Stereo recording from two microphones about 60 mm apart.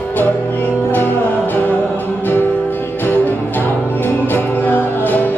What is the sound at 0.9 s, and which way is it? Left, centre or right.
Music, left.